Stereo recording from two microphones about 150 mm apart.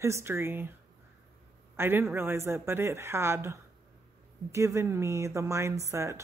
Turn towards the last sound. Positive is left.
turn(degrees=-20)  # may be behind; listen again after turning